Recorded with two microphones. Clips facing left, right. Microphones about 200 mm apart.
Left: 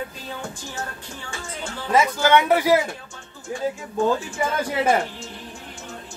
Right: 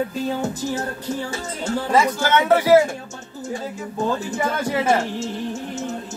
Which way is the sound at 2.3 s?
15° left (ahead or behind).